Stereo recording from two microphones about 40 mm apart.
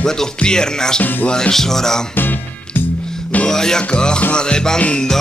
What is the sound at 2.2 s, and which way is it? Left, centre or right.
Music, left.